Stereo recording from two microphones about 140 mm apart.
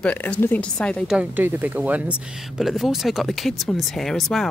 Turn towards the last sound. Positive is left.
turn(degrees=0)  # may be behind; listen again after turning